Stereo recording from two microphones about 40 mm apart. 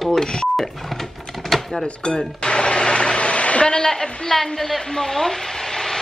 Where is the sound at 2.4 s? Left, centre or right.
Left.